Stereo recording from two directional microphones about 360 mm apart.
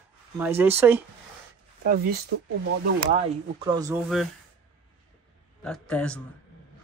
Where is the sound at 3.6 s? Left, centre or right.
Centre.